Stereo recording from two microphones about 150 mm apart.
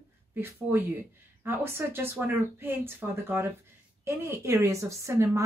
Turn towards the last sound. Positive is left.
turn(degrees=-20)  # may be behind; listen again after turning